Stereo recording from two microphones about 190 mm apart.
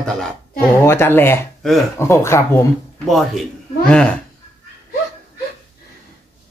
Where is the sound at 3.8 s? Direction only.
5° left (ahead or behind).